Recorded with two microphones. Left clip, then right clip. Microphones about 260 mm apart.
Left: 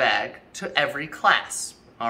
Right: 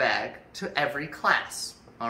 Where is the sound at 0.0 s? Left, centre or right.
Centre.